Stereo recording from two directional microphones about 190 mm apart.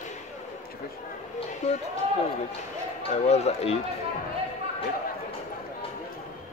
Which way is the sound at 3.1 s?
35° left (ahead or behind).